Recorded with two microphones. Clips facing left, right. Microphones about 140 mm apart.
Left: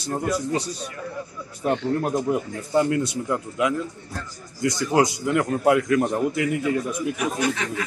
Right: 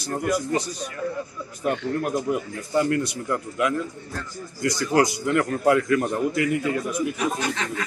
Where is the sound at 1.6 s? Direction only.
30° left (ahead or behind).